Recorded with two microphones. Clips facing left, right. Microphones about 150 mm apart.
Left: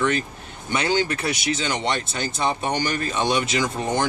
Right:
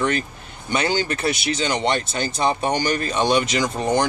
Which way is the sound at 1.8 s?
30° right (ahead or behind).